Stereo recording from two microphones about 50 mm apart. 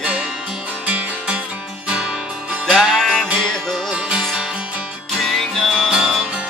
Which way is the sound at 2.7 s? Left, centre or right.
Centre.